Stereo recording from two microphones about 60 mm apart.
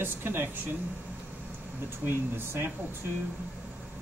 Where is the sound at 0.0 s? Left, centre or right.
Right.